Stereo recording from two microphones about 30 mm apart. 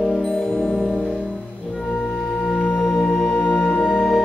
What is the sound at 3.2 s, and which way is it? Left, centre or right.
Music, centre.